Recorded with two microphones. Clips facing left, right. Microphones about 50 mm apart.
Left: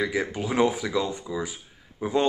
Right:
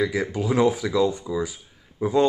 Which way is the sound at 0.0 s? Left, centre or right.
Centre.